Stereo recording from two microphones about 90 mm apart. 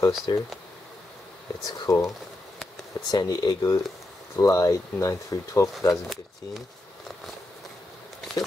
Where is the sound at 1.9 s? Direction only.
40° left (ahead or behind).